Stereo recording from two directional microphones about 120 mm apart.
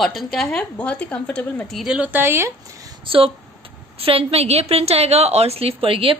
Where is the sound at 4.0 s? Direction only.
55° right (ahead or behind).